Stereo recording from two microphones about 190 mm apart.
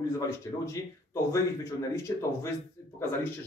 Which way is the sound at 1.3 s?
15° left (ahead or behind).